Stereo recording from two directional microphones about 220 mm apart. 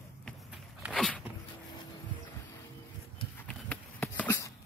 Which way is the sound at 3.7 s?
5° left (ahead or behind).